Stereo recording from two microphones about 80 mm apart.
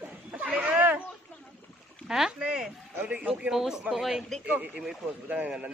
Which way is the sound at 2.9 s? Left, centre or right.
Centre.